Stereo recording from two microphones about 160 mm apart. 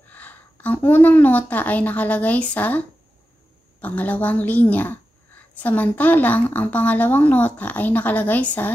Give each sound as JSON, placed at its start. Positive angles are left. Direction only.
{"t": 0.1, "sound": "a woman's voice", "side_deg": 10}
{"t": 3.8, "sound": "a woman's voice", "side_deg": 10}